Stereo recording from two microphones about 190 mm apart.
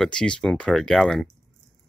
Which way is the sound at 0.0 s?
5° left (ahead or behind).